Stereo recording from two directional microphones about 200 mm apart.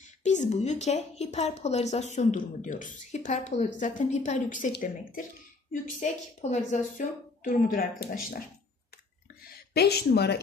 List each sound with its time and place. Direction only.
0.0 s a woman's voice: 35° left (ahead or behind)
9.8 s speech: 55° left (ahead or behind)